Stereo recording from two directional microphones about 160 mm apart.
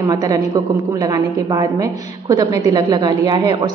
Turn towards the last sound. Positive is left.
turn(degrees=-25)  # may be behind; listen again after turning